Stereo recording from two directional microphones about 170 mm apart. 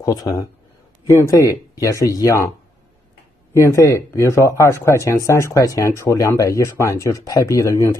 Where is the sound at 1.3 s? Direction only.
20° left (ahead or behind).